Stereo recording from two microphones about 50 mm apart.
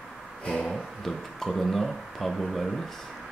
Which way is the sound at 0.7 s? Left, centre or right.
Centre.